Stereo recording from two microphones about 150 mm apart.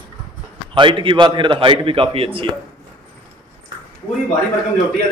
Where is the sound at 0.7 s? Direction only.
35° right (ahead or behind).